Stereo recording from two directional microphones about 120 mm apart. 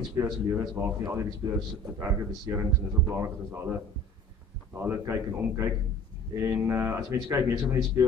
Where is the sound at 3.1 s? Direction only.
15° right (ahead or behind).